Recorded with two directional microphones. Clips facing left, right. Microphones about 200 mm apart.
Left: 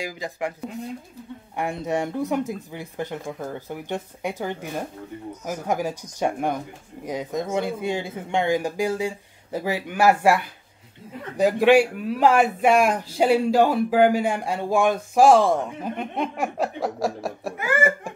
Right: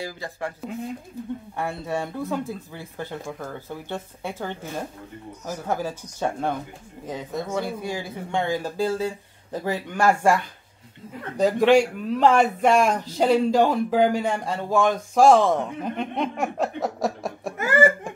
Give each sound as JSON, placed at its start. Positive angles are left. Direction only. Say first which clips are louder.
{"t": 0.0, "sound": "a man's voice", "louder": "left 2 dB", "side_deg": 15}
{"t": 1.6, "sound": "a man's voice", "louder": "left 4 dB", "side_deg": 20}
{"t": 17.6, "sound": "speech", "louder": "right 4 dB", "side_deg": -40}